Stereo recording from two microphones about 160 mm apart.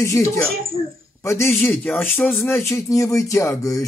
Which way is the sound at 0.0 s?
20° left (ahead or behind).